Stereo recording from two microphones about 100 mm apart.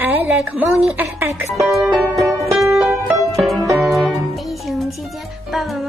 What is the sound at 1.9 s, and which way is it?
Music, centre (ahead or behind).